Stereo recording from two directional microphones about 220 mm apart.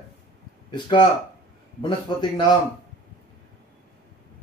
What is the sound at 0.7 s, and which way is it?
A man's voice, 20° left (ahead or behind).